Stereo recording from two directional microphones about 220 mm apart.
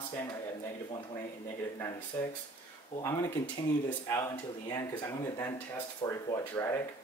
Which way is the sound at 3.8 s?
10° left (ahead or behind).